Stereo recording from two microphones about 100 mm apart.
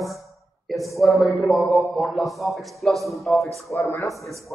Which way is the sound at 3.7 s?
30° left (ahead or behind).